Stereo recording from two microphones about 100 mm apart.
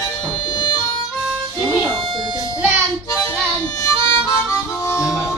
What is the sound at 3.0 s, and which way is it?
Harmonica, 35° left (ahead or behind).